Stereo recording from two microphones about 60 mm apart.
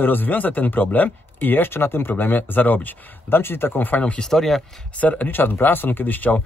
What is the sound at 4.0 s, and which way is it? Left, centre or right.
Speech, centre.